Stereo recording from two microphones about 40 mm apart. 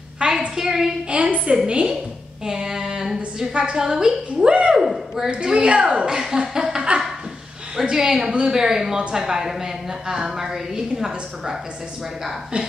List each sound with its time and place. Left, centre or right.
0.2 s a sound: right
0.6 s a woman's voice: centre
1.1 s a woman's voice: right
1.7 s a woman's voice: right
4.5 s a woman's voice: right
4.7 s speech: centre
5.3 s a woman's voice: right
6.0 s a woman's voice: centre